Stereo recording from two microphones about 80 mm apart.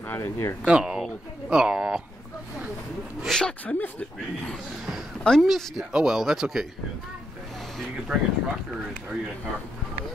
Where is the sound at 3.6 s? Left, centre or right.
Left.